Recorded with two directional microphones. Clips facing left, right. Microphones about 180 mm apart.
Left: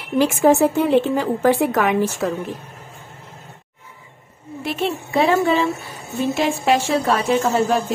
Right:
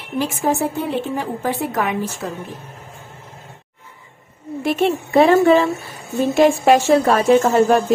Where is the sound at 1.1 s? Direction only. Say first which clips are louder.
Left 5 dB; 90° left.